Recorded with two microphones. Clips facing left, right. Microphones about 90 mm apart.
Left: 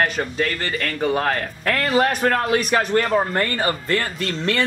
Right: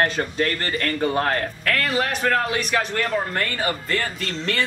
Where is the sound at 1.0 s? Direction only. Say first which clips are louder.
Left 2 dB; 15° left (ahead or behind).